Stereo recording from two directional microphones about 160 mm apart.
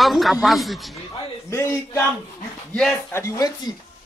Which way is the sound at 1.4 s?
15° left (ahead or behind).